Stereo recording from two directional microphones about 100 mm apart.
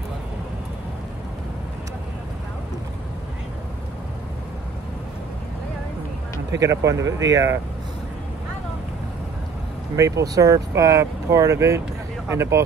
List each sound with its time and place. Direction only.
6.6 s speech: 35° right (ahead or behind)
9.9 s speech: 30° right (ahead or behind)